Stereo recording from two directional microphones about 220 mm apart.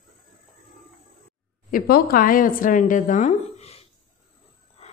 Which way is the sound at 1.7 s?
40° left (ahead or behind).